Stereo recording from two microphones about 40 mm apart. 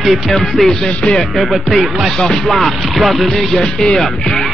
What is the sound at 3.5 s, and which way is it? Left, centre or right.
Music, centre.